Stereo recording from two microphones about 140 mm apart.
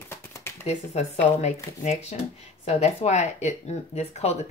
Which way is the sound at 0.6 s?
55° left (ahead or behind).